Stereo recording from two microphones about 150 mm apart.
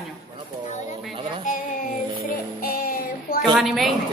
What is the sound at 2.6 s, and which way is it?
Child singing, 70° left (ahead or behind).